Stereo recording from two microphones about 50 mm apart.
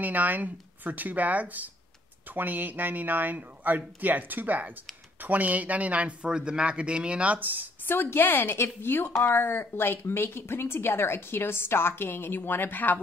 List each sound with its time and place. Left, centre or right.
0.0 s speech: right
7.3 s speech: right
7.8 s speech: left